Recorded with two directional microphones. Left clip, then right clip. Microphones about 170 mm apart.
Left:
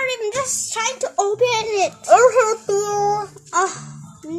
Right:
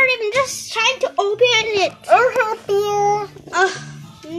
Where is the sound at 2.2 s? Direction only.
35° left (ahead or behind).